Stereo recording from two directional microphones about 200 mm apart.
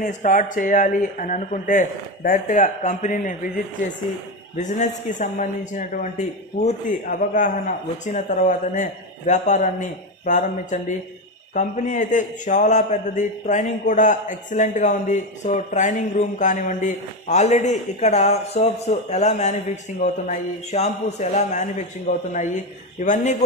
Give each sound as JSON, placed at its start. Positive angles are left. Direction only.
{"t": 0.0, "sound": "a man's voice", "side_deg": 40}